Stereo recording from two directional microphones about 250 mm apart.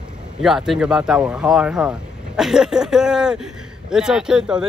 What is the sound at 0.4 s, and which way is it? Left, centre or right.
Speech, centre.